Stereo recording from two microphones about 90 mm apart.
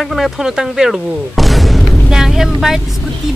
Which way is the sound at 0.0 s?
Centre (ahead or behind).